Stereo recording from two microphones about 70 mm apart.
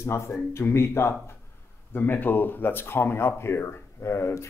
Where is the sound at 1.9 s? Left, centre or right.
Left.